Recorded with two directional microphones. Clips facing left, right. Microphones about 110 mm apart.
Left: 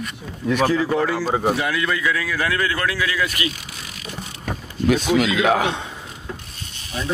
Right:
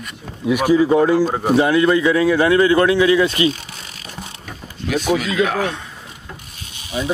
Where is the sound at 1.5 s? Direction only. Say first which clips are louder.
Right 9 dB; 30° right (ahead or behind).